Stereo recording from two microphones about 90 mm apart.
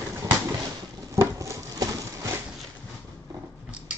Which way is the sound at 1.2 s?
35° right (ahead or behind).